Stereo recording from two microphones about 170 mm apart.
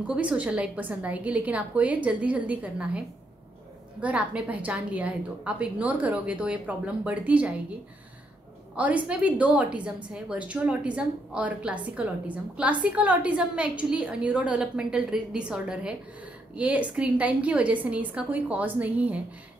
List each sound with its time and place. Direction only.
0.0 s a woman's voice: 5° right (ahead or behind)
4.0 s a woman's voice: 10° right (ahead or behind)
8.7 s a woman's voice: 10° right (ahead or behind)